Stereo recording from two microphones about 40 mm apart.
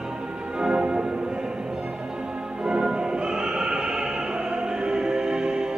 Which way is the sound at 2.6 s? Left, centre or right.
Centre.